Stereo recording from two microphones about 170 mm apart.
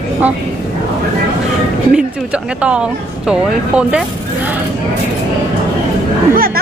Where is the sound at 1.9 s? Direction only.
5° right (ahead or behind).